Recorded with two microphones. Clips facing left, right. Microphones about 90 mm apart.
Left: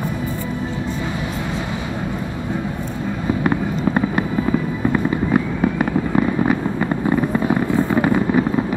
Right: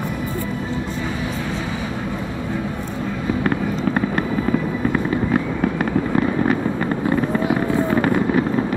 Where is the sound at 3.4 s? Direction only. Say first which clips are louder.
Left 2 dB; 10° left (ahead or behind).